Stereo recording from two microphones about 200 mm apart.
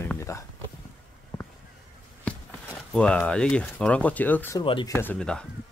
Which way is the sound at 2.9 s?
5° left (ahead or behind).